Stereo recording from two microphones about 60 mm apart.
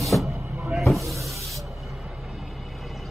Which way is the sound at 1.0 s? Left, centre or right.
Right.